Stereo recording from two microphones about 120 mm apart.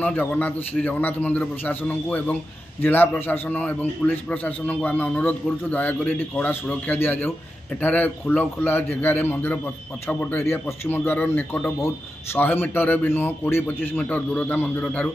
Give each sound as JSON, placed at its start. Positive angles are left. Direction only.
{"t": 0.0, "sound": "a man's voice", "side_deg": 15}